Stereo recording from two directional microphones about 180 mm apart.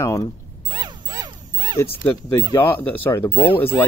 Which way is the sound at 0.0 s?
15° left (ahead or behind).